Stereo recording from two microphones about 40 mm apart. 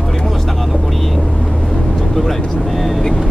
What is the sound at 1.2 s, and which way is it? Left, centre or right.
Vehicle, left.